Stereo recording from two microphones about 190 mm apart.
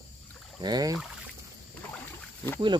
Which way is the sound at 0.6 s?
20° right (ahead or behind).